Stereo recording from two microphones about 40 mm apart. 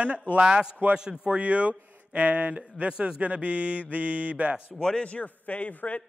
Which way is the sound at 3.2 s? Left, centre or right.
Right.